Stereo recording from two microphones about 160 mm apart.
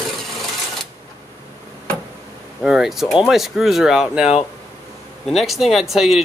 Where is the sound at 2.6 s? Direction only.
5° right (ahead or behind).